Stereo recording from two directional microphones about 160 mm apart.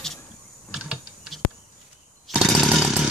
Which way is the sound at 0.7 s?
5° right (ahead or behind).